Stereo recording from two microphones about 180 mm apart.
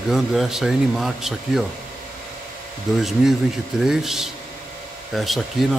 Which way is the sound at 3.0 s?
Centre (ahead or behind).